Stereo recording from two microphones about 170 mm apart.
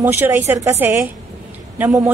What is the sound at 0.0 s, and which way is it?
Speech, 10° right (ahead or behind).